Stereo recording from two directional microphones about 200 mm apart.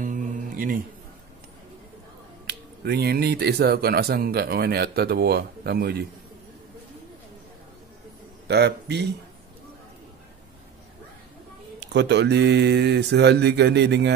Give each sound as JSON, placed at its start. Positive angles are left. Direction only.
{"t": 0.0, "sound": "a sound", "side_deg": -40}
{"t": 2.4, "sound": "speech", "side_deg": -55}
{"t": 8.5, "sound": "speech", "side_deg": -55}
{"t": 11.8, "sound": "speech", "side_deg": -55}